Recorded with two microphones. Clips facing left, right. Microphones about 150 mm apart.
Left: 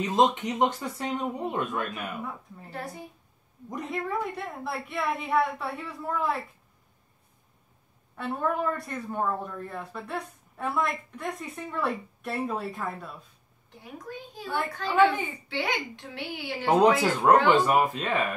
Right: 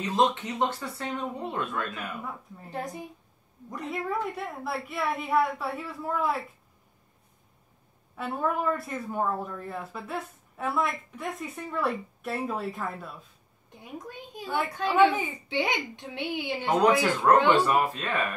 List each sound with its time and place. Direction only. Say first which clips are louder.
0.0 s speech: left 2 dB; 15° left (ahead or behind)
2.7 s a child's voice: right 3 dB; 20° right (ahead or behind)
3.9 s speech: even; centre (ahead or behind)
8.2 s speech: even; 5° right (ahead or behind)
14.0 s a child's voice: left 3 dB; 15° right (ahead or behind)
16.6 s speech: left 2 dB; 20° left (ahead or behind)